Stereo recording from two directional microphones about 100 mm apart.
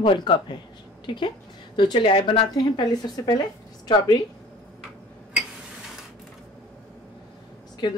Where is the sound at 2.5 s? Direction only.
45° left (ahead or behind).